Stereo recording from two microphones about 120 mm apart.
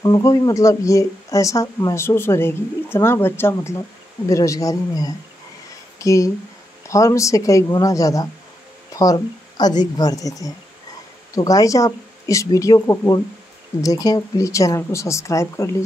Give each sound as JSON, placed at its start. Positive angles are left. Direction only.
{"t": 0.0, "sound": "speech", "side_deg": 30}